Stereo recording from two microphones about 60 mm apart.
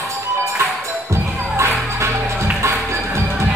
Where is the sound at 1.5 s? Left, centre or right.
Right.